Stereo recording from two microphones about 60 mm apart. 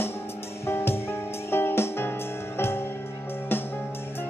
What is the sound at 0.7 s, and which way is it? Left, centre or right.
Music, left.